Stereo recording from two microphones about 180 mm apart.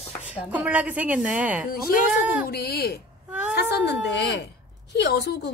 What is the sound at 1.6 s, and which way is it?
A woman's voice, 55° left (ahead or behind).